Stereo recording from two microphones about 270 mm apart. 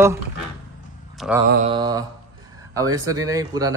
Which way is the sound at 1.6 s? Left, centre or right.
Centre.